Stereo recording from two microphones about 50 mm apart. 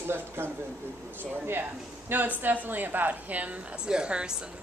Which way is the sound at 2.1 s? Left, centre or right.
Right.